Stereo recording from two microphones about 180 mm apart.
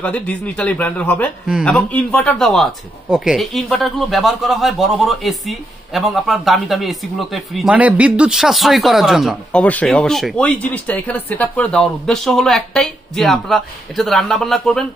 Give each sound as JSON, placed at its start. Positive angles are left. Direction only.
{"t": 0.0, "sound": "speech", "side_deg": 5}